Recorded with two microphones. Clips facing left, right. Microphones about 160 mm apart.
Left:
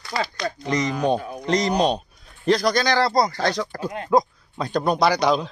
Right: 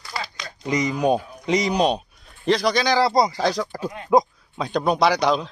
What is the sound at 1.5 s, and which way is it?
Speech, 5° right (ahead or behind).